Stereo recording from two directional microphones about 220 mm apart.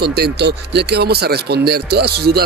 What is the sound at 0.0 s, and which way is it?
Speech, 45° right (ahead or behind).